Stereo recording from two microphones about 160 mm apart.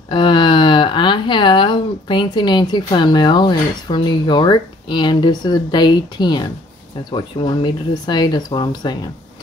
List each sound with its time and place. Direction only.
0.1 s speech: 30° left (ahead or behind)